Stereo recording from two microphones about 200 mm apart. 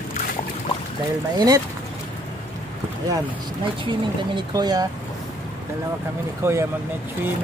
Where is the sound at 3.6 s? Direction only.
25° right (ahead or behind).